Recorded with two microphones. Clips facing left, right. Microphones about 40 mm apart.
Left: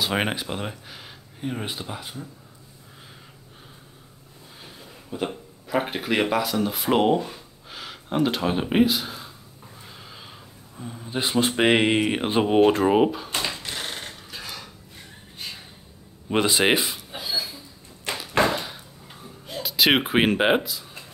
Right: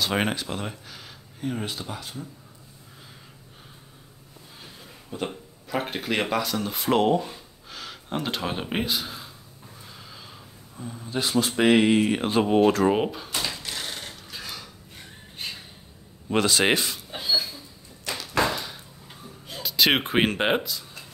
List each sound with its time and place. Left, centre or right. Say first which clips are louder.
0.0 s speech: left 1 dB; centre
5.1 s speech: left 2 dB; centre
9.9 s a sound: left 2 dB; centre
10.8 s speech: left 1 dB; centre
13.3 s mechanisms: left 2 dB; left
13.7 s a sound: left 2 dB; left
14.0 s a sound: left 1 dB; centre
16.3 s speech: left 1 dB; centre
18.3 s door: left 3 dB; left
19.2 s speech: left 3 dB; centre